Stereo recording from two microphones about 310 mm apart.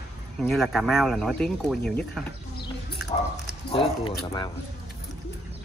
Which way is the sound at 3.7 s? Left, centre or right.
Centre.